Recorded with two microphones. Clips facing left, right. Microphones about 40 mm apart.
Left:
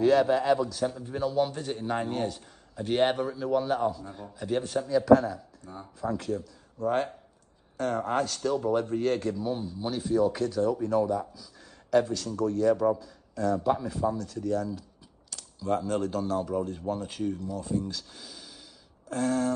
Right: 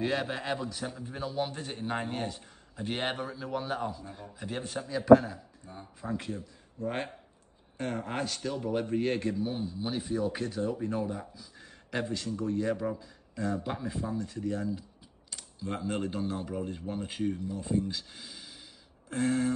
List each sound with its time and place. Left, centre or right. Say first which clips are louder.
0.0 s speech: left 9 dB; centre
0.9 s a man's voice: left 5 dB; centre
4.8 s a man's voice: right 1 dB; right